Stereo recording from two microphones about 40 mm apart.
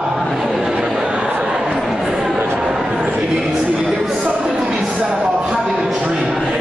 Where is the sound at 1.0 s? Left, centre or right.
Right.